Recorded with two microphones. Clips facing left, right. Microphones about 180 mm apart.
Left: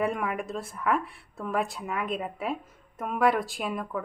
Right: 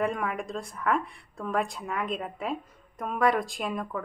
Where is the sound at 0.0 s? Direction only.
5° left (ahead or behind).